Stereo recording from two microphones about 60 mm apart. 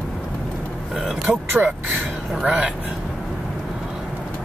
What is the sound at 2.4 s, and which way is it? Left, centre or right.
Speech, centre.